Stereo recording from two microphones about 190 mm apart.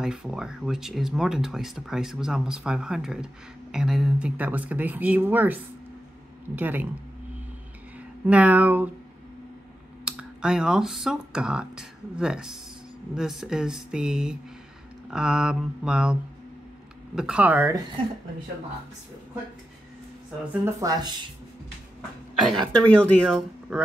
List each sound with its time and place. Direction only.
0.0 s speech: 5° right (ahead or behind)
8.3 s speech: 10° right (ahead or behind)
10.0 s speech: 5° right (ahead or behind)
20.6 s speech: 20° right (ahead or behind)
22.4 s speech: centre (ahead or behind)